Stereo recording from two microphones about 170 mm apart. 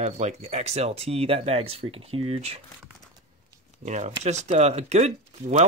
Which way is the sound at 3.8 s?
45° right (ahead or behind).